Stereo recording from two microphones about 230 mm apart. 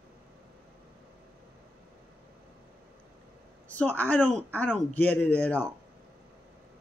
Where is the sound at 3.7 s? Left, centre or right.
Centre.